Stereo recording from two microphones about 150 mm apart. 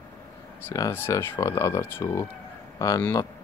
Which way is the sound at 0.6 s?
20° left (ahead or behind).